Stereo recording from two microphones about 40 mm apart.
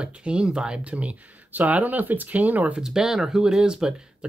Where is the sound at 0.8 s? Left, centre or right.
Right.